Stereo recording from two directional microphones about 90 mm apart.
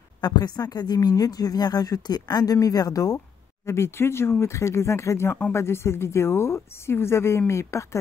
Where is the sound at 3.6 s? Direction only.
30° left (ahead or behind).